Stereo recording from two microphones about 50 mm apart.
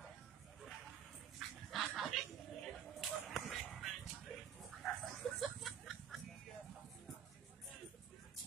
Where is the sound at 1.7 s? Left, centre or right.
Centre.